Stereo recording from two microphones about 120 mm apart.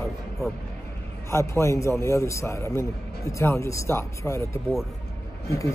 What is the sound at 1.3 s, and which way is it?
A man's voice, 20° left (ahead or behind).